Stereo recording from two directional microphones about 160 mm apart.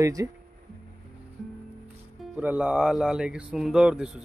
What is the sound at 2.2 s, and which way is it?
Speech, 10° right (ahead or behind).